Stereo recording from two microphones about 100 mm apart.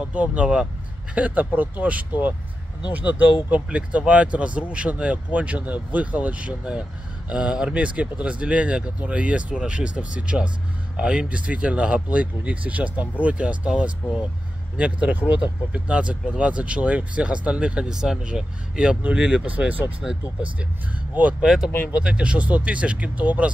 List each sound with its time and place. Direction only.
0.0 s speech: 15° right (ahead or behind)